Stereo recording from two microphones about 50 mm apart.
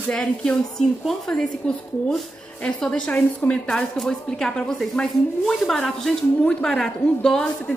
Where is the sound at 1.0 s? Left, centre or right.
Centre.